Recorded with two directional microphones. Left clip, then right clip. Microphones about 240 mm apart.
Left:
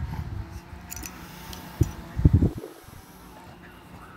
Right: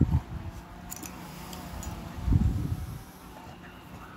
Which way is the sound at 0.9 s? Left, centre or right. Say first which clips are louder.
Left 3 dB; centre.